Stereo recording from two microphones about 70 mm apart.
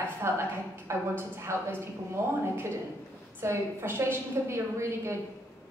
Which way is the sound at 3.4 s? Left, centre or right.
Right.